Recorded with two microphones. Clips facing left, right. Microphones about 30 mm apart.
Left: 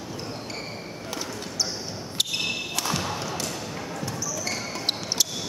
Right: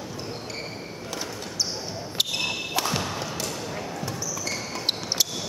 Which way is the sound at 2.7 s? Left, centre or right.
Centre.